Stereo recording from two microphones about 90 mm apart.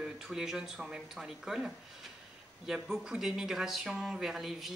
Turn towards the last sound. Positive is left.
turn(degrees=-5)  # may be behind; listen again after turning